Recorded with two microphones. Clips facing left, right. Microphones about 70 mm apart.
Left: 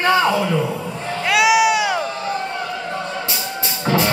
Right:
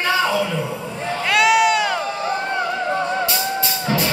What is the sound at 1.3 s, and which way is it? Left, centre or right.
Sheep, centre.